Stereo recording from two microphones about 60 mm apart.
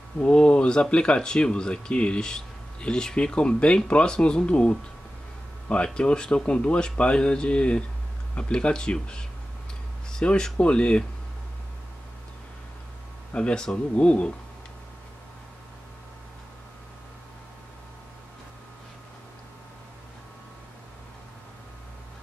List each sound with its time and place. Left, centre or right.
0.2 s speech: centre
5.9 s speech: centre
13.3 s speech: centre